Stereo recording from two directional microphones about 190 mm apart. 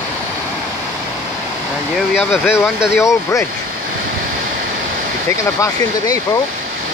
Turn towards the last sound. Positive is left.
turn(degrees=15)  # may be behind; listen again after turning